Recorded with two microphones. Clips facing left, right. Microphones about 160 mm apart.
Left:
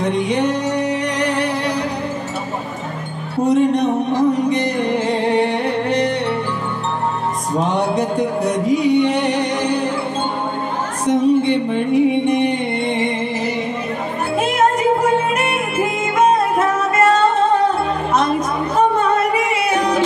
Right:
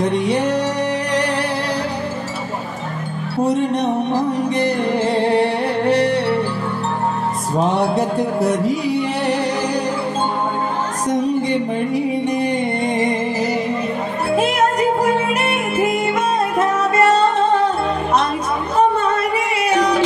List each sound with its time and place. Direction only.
0.0 s music: 35° right (ahead or behind)
3.4 s music: 35° right (ahead or behind)
7.7 s music: 35° right (ahead or behind)
11.1 s music: 35° right (ahead or behind)